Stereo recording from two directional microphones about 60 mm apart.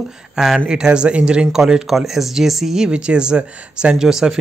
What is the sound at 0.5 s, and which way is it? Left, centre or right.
Speech, centre.